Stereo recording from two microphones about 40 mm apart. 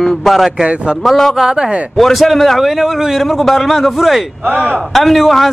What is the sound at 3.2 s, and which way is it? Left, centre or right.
A man's voice, centre.